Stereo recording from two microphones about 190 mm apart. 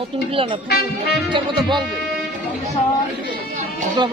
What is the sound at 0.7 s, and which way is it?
Speech, 55° left (ahead or behind).